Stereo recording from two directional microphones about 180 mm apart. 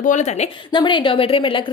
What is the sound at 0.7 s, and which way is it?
Speech, 25° left (ahead or behind).